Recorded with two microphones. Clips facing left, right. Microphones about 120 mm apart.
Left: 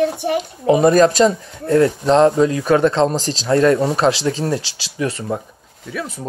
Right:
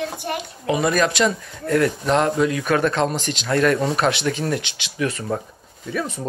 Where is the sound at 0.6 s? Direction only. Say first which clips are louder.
Left 8 dB; 40° left (ahead or behind).